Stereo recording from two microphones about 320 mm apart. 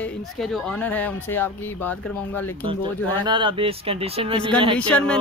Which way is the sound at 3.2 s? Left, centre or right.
Centre.